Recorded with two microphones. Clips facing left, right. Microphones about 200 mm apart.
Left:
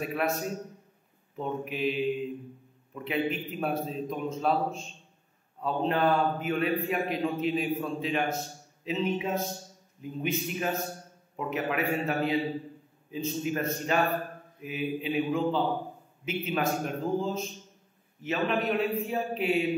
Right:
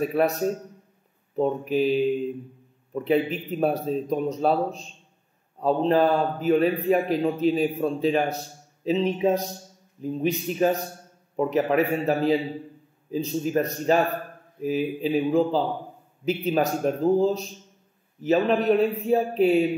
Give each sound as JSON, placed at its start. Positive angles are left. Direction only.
{"t": 0.0, "sound": "a man's voice", "side_deg": -35}
{"t": 1.3, "sound": "a man's voice", "side_deg": -35}